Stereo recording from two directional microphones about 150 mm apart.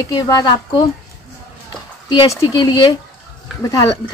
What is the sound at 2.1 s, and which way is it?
Speech, 25° left (ahead or behind).